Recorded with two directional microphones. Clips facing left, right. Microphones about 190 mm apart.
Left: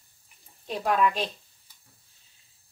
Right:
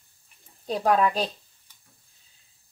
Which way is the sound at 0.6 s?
40° right (ahead or behind).